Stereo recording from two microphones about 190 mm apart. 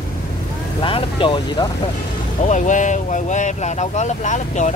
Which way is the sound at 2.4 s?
40° left (ahead or behind).